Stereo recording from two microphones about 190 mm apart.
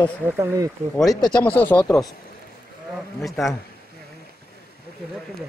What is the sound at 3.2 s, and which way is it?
Speech, centre (ahead or behind).